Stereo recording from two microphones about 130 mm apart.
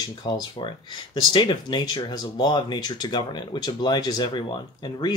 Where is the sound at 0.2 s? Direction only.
35° left (ahead or behind).